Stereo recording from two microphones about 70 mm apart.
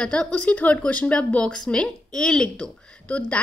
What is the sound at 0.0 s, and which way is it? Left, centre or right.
A woman's voice, centre.